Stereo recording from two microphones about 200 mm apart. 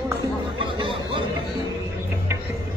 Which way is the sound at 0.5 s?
25° right (ahead or behind).